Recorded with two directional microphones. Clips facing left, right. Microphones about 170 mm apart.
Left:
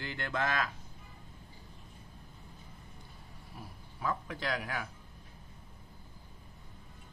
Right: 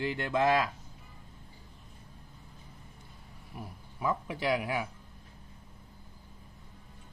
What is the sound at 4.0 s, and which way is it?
Speech, 15° right (ahead or behind).